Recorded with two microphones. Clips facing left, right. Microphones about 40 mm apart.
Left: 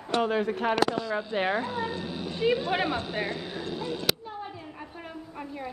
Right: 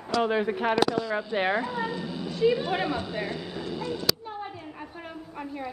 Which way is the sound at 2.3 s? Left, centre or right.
Left.